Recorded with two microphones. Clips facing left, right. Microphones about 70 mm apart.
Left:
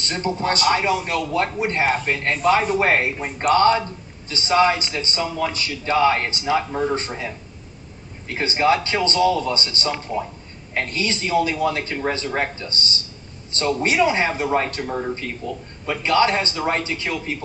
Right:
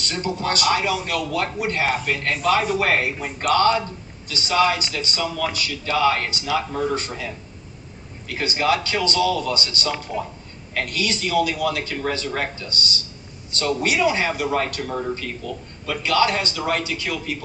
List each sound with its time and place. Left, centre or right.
0.0 s a man's voice: left